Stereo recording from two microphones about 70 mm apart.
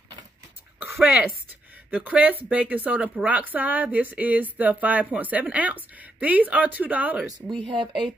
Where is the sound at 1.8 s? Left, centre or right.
Right.